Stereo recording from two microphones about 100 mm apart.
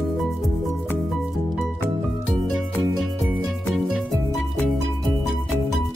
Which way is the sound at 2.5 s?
Centre (ahead or behind).